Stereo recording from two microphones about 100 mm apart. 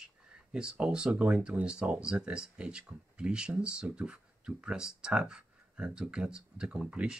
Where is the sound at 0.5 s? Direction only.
10° right (ahead or behind).